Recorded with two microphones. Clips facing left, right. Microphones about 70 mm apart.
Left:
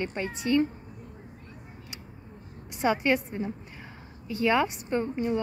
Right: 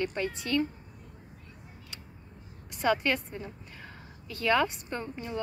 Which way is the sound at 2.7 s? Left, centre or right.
Centre.